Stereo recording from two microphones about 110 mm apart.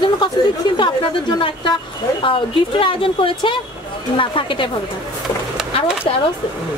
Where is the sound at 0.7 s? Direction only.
40° left (ahead or behind).